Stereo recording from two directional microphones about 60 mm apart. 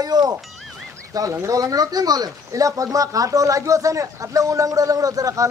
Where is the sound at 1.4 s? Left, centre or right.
Right.